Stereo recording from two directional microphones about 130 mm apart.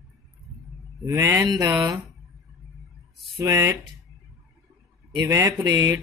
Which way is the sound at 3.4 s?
25° right (ahead or behind).